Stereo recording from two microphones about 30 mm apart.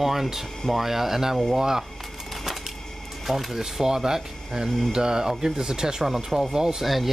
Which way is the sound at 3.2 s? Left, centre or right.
Centre.